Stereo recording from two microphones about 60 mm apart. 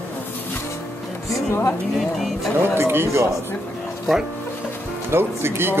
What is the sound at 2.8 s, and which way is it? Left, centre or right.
Speech, right.